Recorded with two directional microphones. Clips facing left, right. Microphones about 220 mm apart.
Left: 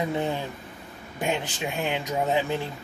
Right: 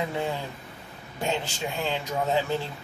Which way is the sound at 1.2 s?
15° left (ahead or behind).